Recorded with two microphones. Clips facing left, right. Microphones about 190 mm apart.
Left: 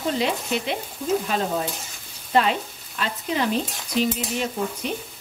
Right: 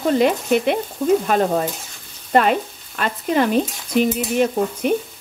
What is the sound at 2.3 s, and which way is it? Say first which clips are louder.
Frying: right 4 dB; 55° right (ahead or behind).